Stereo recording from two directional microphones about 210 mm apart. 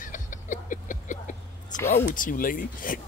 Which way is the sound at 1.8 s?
10° left (ahead or behind).